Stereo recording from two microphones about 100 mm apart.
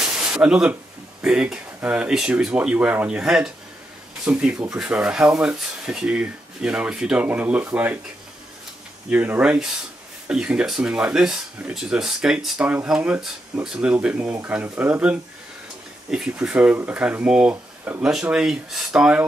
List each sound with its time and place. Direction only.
0.0 s a sound: 10° right (ahead or behind)
1.2 s speech: 10° right (ahead or behind)
9.1 s speech: 15° right (ahead or behind)